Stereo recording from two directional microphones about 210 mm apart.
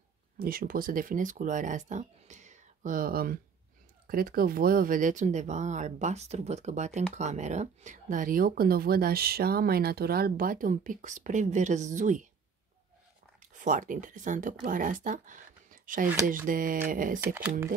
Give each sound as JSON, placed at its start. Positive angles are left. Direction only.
{"t": 0.4, "sound": "speech", "side_deg": -45}
{"t": 13.4, "sound": "speech", "side_deg": -35}
{"t": 17.2, "sound": "speech", "side_deg": -10}